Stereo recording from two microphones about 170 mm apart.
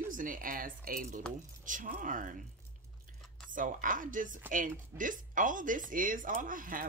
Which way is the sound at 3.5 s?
50° right (ahead or behind).